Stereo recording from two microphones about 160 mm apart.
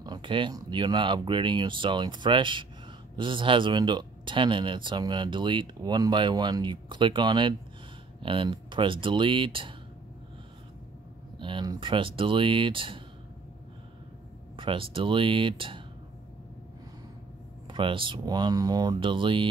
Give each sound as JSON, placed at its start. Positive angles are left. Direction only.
{"t": 0.0, "sound": "speech", "side_deg": -30}
{"t": 11.3, "sound": "speech", "side_deg": -30}
{"t": 14.6, "sound": "speech", "side_deg": -35}
{"t": 17.6, "sound": "speech", "side_deg": -30}